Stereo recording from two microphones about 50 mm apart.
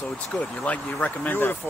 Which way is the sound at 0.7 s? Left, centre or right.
Left.